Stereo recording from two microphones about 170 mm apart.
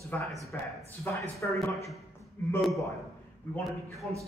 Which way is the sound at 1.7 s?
Centre (ahead or behind).